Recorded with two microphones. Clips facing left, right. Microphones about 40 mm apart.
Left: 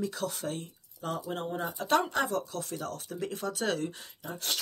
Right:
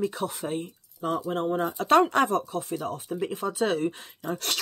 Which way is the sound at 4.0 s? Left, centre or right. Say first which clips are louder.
Right 8 dB; right.